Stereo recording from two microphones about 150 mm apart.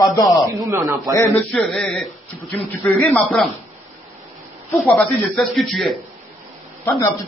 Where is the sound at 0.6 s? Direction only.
20° right (ahead or behind).